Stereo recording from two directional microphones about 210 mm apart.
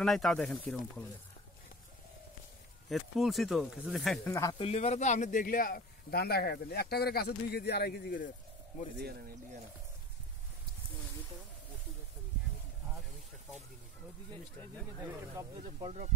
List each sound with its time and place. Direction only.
0.0 s speech: centre (ahead or behind)
2.9 s speech: centre (ahead or behind)
4.3 s speech: 15° left (ahead or behind)
4.6 s speech: 30° left (ahead or behind); by 8.3 s 45° left (ahead or behind)
15.0 s speech: 10° right (ahead or behind)
15.8 s speech: 35° right (ahead or behind)